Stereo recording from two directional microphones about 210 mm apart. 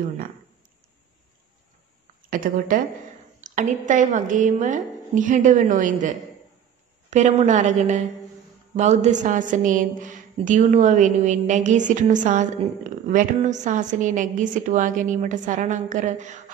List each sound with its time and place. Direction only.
2.2 s a woman's voice: 40° right (ahead or behind)